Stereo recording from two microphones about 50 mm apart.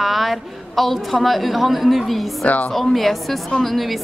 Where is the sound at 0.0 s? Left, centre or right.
Centre.